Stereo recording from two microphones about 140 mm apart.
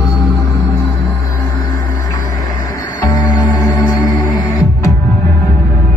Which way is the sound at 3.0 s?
25° left (ahead or behind).